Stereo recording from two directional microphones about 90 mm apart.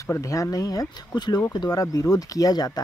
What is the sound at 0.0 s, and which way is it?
Speech, 35° left (ahead or behind).